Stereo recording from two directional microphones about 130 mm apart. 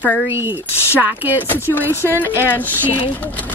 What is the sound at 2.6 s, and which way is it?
Speech, 15° left (ahead or behind).